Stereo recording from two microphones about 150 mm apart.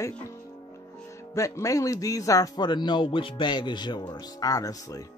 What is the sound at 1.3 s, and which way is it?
Speech, 20° left (ahead or behind).